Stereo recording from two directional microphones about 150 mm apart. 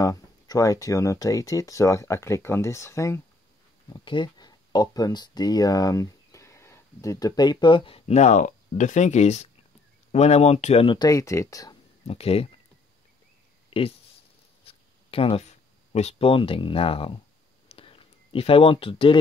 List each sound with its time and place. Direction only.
0.0 s speech: 25° left (ahead or behind)
3.9 s speech: 30° left (ahead or behind)
12.1 s speech: 40° left (ahead or behind)
13.7 s a sound: 40° left (ahead or behind)
14.7 s speech: 40° left (ahead or behind)
17.6 s a sound: 40° left (ahead or behind)